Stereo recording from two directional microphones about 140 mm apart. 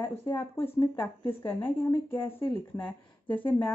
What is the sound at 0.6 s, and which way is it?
Speech, 35° left (ahead or behind).